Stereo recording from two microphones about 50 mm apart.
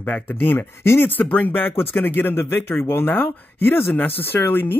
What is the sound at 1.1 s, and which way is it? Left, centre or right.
Speech, left.